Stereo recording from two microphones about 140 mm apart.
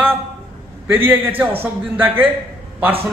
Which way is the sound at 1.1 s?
15° right (ahead or behind).